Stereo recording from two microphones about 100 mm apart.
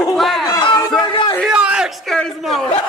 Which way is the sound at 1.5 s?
10° right (ahead or behind).